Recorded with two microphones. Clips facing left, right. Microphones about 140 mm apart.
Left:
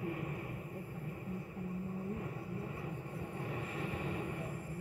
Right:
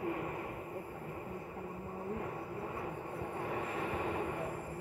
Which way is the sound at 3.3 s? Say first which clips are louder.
Right 4 dB; 90° right.